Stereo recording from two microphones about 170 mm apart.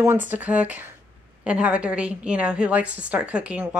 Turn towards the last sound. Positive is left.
turn(degrees=-10)  # may be behind; listen again after turning